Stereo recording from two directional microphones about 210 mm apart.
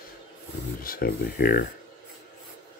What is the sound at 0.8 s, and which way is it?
Speech, 45° left (ahead or behind).